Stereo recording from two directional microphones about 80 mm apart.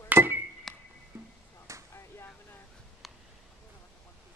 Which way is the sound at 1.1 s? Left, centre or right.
Right.